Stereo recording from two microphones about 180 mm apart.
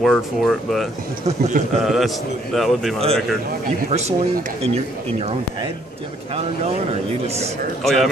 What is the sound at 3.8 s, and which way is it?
Speech, 40° right (ahead or behind).